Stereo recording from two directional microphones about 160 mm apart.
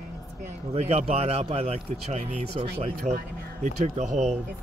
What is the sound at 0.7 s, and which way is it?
Speech, 40° right (ahead or behind).